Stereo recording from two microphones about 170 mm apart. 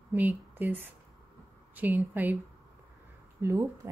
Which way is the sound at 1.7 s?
10° right (ahead or behind).